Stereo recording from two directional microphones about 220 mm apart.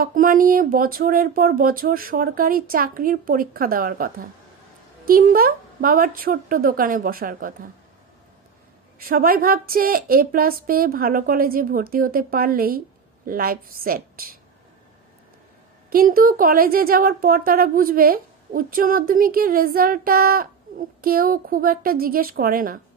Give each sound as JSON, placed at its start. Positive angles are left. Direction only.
{"t": 0.0, "sound": "a woman's voice", "side_deg": -40}
{"t": 9.0, "sound": "a woman's voice", "side_deg": -40}
{"t": 15.9, "sound": "a woman's voice", "side_deg": -40}